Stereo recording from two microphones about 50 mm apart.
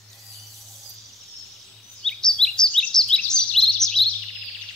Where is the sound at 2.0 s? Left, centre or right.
Centre.